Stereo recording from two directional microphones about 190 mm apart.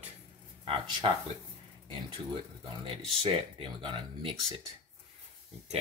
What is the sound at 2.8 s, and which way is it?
Speech, 30° right (ahead or behind).